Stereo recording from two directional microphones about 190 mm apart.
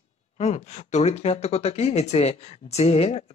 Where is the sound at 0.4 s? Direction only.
35° left (ahead or behind).